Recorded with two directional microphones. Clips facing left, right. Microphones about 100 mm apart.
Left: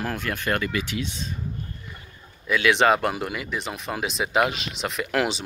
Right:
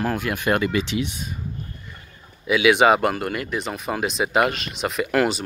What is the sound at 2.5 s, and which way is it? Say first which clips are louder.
Speech: right 3 dB; 5° right (ahead or behind).